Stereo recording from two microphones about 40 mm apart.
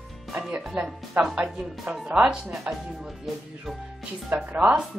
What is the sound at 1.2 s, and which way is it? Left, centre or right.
Speech, right.